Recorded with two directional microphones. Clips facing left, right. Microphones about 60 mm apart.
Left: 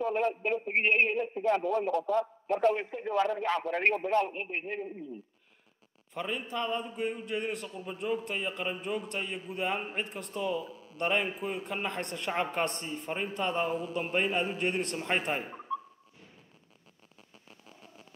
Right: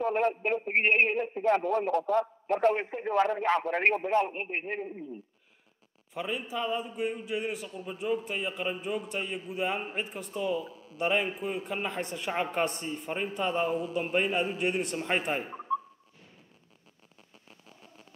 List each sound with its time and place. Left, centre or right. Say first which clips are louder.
0.0 s a sound: right 2 dB; right
0.3 s a man's voice: right 2 dB; right
4.1 s a man's voice: right 1 dB; centre
4.4 s a man's voice: right 2 dB; right
6.1 s a man's voice: right 1 dB; centre